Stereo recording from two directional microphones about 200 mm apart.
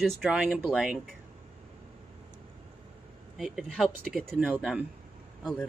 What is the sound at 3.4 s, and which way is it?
A woman's voice, centre (ahead or behind).